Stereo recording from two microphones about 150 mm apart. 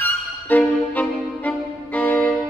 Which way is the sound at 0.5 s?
10° left (ahead or behind).